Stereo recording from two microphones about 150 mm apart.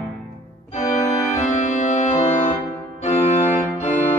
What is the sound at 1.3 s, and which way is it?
Organ, 50° left (ahead or behind).